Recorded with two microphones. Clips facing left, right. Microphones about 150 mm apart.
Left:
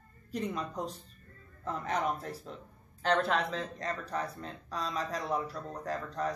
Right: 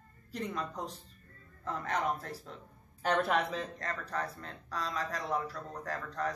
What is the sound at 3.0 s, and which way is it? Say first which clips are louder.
Speech: left 1 dB; 5° right (ahead or behind).